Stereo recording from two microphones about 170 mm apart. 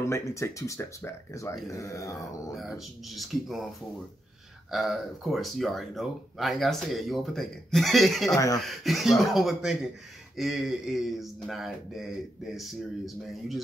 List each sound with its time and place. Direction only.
0.0 s speech: 15° left (ahead or behind)
1.7 s a sound: 20° left (ahead or behind)
2.5 s speech: centre (ahead or behind)
4.6 s speech: centre (ahead or behind)